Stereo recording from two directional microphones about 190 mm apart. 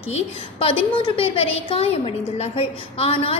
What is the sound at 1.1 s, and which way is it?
A woman's voice, 30° left (ahead or behind).